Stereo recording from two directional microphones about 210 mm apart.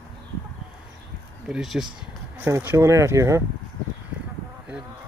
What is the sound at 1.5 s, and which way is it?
Speech, centre (ahead or behind).